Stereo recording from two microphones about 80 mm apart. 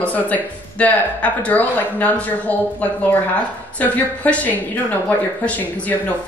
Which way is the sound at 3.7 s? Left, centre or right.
Centre.